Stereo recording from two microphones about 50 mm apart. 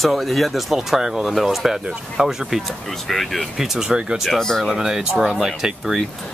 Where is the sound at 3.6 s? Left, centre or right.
Centre.